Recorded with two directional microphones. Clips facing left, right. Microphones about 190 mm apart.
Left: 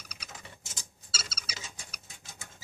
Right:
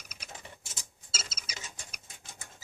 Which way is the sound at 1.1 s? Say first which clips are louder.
Even; 20° right (ahead or behind).